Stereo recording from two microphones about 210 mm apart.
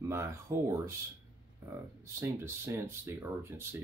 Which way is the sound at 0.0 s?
15° right (ahead or behind).